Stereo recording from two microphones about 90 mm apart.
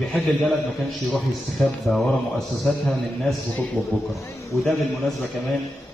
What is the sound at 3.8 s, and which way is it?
Speech, 20° left (ahead or behind).